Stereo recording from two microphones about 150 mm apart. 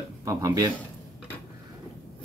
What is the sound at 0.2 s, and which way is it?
Speech, 20° right (ahead or behind).